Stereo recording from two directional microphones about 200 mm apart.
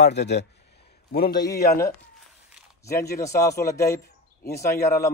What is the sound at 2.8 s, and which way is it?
A man's voice, 15° left (ahead or behind).